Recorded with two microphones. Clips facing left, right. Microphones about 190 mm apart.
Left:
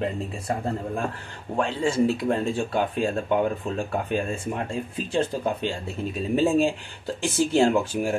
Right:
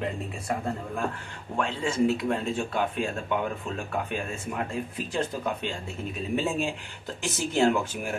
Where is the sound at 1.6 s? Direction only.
30° left (ahead or behind).